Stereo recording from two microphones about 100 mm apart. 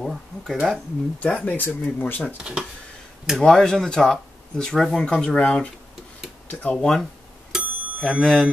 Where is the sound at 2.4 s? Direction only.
10° right (ahead or behind).